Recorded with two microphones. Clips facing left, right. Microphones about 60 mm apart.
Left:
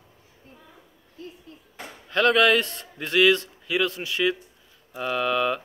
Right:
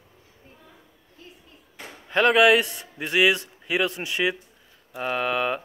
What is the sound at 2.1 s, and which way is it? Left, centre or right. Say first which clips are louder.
A man's voice: right 2 dB; right.